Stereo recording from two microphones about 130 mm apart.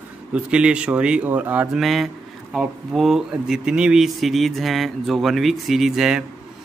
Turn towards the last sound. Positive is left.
turn(degrees=-5)  # may be behind; listen again after turning